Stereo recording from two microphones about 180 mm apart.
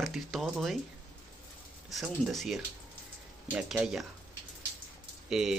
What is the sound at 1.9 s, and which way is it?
Speech, centre (ahead or behind).